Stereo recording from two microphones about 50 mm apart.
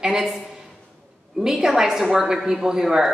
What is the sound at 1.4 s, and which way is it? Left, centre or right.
A woman's voice, centre.